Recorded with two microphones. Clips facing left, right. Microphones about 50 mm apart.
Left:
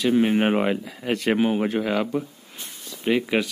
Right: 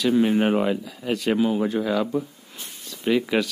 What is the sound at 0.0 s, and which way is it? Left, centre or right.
Speech, left.